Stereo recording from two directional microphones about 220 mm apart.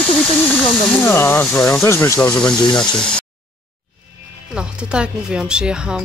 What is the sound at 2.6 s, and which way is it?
Speech, 20° left (ahead or behind).